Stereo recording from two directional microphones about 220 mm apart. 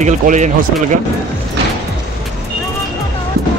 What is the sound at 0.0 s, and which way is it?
Speech, 35° right (ahead or behind).